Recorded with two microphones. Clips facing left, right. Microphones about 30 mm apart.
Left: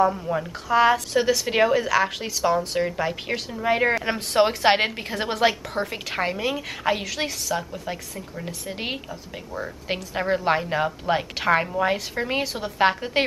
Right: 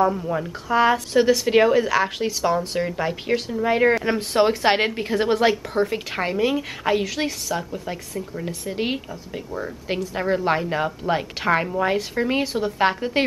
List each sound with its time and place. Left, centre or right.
0.0 s speech: centre
10.1 s speech: centre